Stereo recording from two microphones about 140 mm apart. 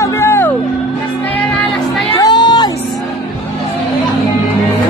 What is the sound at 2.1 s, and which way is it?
Music, 30° left (ahead or behind).